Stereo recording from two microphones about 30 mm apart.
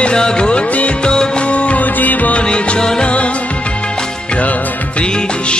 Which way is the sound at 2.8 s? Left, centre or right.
Left.